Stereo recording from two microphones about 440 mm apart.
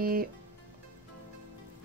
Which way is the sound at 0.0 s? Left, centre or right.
Centre.